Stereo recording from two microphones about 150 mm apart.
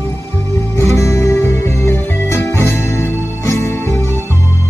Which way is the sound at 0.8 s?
20° left (ahead or behind).